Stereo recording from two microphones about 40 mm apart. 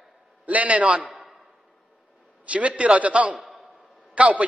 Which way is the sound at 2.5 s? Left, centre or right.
Right.